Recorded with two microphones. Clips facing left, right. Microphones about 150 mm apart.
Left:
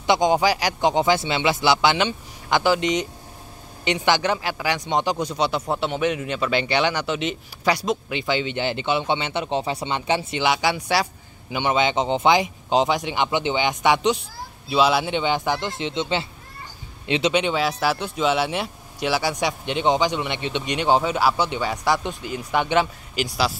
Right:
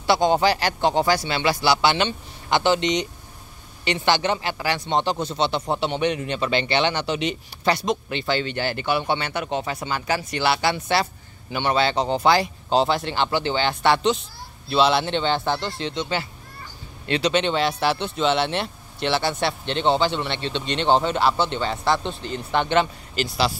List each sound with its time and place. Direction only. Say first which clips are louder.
0.0 s speech: even; 15° left (ahead or behind)